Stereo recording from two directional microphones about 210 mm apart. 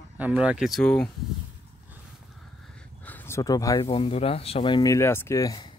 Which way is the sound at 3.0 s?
10° left (ahead or behind).